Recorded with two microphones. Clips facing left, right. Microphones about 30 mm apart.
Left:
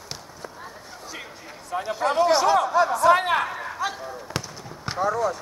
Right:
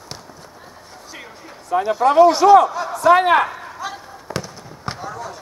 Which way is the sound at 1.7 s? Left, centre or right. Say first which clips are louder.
Right 9 dB; right.